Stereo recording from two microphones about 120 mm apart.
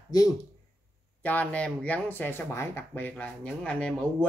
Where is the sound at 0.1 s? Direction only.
35° left (ahead or behind).